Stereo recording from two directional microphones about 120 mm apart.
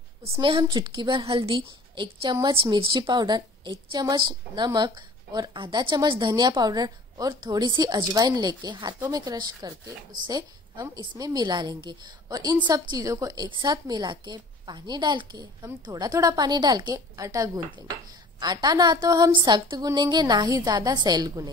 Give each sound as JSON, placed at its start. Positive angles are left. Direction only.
{"t": 0.2, "sound": "a woman's voice", "side_deg": -45}